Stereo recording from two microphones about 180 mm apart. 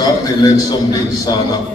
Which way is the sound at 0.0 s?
20° left (ahead or behind).